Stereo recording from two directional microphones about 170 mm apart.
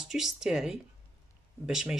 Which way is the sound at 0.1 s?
5° right (ahead or behind).